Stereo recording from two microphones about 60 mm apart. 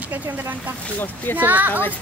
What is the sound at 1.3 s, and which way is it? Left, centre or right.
Speech, right.